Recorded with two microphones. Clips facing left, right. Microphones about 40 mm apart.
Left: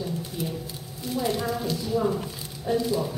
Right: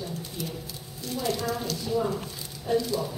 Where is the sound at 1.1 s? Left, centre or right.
Centre.